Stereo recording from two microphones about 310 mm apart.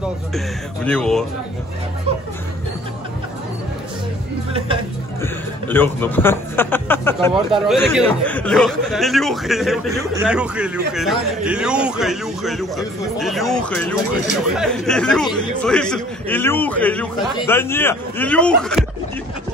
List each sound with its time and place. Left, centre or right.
0.8 s a man's voice: centre
5.2 s a man's voice: centre